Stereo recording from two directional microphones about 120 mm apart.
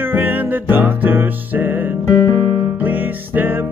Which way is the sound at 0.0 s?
15° right (ahead or behind).